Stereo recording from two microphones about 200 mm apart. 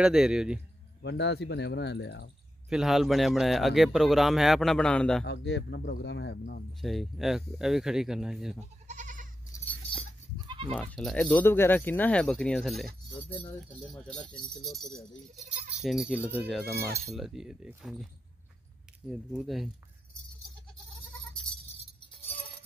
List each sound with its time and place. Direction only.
0.0 s a man's voice: 5° right (ahead or behind)
1.0 s speech: 60° left (ahead or behind)
2.7 s a man's voice: centre (ahead or behind)
5.2 s speech: 60° left (ahead or behind)
6.8 s a man's voice: centre (ahead or behind)
8.8 s goat: 40° right (ahead or behind)
10.3 s goat: 25° right (ahead or behind)
10.7 s speech: 5° left (ahead or behind)
13.8 s a man's voice: 5° left (ahead or behind)
19.0 s a man's voice: centre (ahead or behind)